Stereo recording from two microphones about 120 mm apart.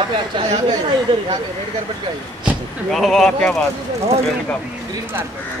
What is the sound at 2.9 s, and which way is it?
Speech, 5° left (ahead or behind).